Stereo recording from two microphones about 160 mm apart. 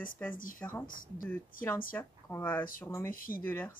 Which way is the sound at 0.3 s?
60° left (ahead or behind).